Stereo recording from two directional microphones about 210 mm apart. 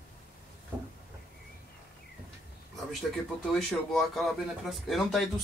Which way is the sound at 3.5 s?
Centre (ahead or behind).